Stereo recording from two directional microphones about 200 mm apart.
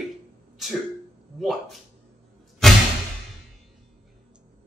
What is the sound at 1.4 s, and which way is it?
Speech, centre (ahead or behind).